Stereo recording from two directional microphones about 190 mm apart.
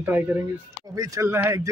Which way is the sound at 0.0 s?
10° right (ahead or behind).